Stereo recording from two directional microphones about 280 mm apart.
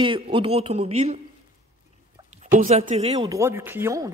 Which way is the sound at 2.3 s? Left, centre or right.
Right.